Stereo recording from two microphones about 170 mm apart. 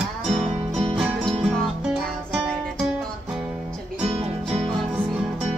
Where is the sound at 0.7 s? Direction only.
5° right (ahead or behind).